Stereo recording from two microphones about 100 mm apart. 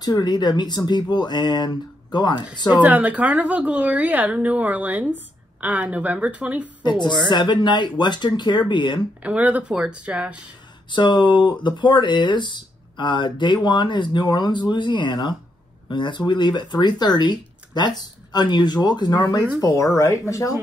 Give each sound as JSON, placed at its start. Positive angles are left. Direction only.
{"t": 0.0, "sound": "speech", "side_deg": 45}
{"t": 2.7, "sound": "a woman's voice", "side_deg": -15}
{"t": 6.8, "sound": "a woman's voice", "side_deg": 50}
{"t": 9.2, "sound": "a woman's voice", "side_deg": -15}
{"t": 10.9, "sound": "speech", "side_deg": 50}
{"t": 19.6, "sound": "speech", "side_deg": 30}